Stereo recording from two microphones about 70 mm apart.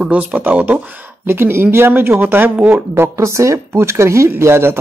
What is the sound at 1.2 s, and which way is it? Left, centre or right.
Speech, right.